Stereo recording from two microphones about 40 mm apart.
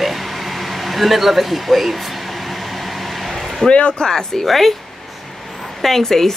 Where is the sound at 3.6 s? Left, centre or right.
Left.